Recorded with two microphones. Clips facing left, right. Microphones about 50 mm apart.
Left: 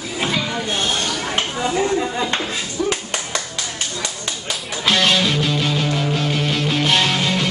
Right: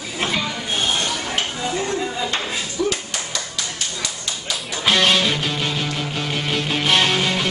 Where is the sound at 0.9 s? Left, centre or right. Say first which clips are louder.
Even; centre.